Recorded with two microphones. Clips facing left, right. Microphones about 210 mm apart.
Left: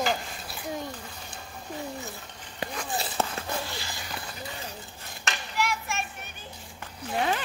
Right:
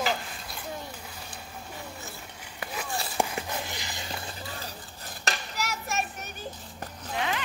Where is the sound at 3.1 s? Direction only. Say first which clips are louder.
Right 4 dB; 15° right (ahead or behind); by 6.3 s 40° right (ahead or behind).